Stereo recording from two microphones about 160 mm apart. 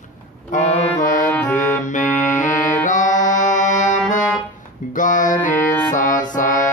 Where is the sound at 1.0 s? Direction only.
55° left (ahead or behind).